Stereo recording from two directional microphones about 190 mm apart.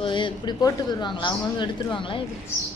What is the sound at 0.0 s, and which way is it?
Speech, 25° left (ahead or behind).